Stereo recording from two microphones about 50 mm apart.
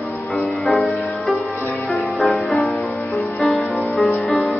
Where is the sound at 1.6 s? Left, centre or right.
Left.